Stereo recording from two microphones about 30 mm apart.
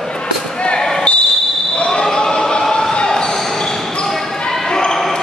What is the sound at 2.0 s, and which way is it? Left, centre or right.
Choir, centre.